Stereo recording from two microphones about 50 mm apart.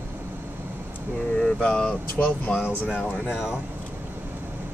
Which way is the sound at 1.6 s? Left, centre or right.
Left.